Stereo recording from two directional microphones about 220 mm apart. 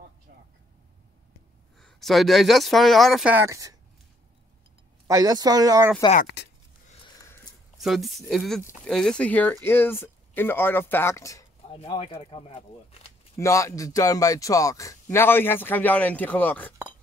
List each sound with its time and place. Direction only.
1.8 s speech: centre (ahead or behind)
5.0 s speech: 15° right (ahead or behind)
6.2 s speech: 50° left (ahead or behind)
7.7 s speech: centre (ahead or behind)
11.7 s speech: 25° left (ahead or behind)
13.4 s speech: 15° left (ahead or behind)